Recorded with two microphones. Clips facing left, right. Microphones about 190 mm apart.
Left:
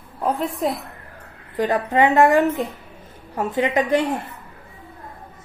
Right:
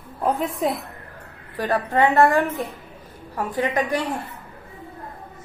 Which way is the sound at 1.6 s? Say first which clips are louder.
Left 2 dB; 15° left (ahead or behind).